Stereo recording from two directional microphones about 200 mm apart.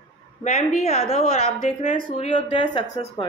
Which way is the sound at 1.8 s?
25° left (ahead or behind).